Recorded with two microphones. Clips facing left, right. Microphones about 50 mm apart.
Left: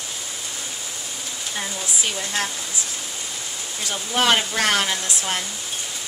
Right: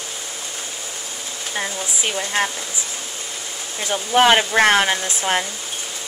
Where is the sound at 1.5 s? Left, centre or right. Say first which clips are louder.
Right 4 dB; right.